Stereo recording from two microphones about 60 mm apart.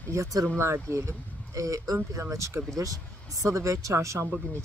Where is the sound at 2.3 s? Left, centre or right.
Right.